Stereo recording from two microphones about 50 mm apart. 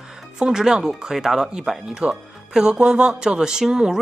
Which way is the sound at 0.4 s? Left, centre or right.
Centre.